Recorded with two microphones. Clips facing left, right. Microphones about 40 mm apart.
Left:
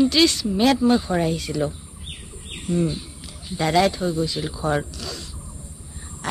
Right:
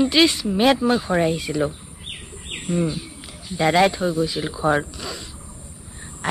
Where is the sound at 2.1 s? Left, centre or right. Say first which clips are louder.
Right 4 dB; right.